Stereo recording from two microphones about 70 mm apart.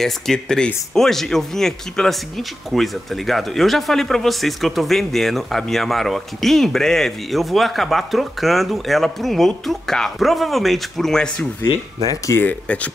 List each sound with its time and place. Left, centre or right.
0.0 s speech: centre
12.4 s speech: left